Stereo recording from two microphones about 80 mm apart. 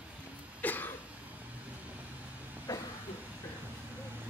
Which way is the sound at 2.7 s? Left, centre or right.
Left.